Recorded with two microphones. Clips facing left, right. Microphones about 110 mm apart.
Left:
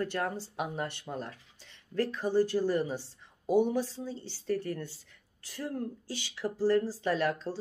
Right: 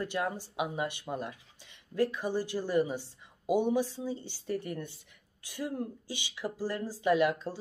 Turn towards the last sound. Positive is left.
turn(degrees=-15)  # may be behind; listen again after turning